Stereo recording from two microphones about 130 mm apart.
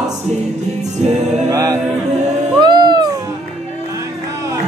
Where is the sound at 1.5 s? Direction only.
25° right (ahead or behind).